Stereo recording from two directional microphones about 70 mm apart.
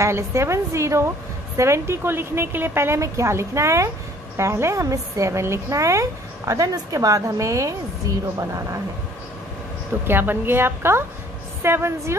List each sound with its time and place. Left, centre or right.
0.0 s a woman's voice: right
10.0 s a woman's voice: right